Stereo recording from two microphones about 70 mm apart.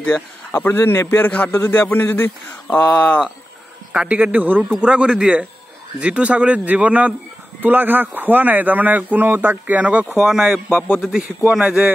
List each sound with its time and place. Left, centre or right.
0.5 s speech: left
3.9 s speech: centre
4.6 s a man's voice: centre